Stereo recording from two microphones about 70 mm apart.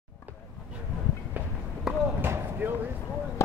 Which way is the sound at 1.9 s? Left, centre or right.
Centre.